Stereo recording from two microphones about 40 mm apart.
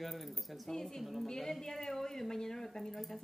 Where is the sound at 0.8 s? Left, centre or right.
Centre.